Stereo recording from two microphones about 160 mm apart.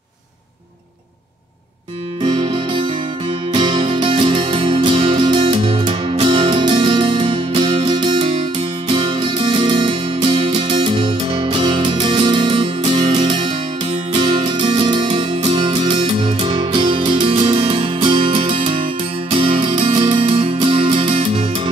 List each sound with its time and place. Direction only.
2.5 s music: 30° right (ahead or behind)